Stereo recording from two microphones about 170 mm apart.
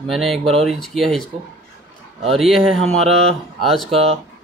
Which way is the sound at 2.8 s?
35° right (ahead or behind).